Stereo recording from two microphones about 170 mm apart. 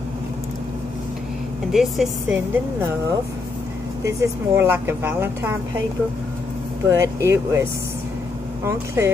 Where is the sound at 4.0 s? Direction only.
15° right (ahead or behind).